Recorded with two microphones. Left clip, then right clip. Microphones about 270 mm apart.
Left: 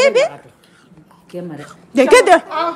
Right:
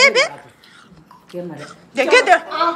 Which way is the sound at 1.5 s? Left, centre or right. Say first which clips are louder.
Left 6 dB; centre.